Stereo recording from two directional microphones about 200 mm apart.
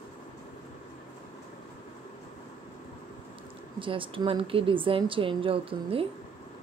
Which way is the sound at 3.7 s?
25° right (ahead or behind).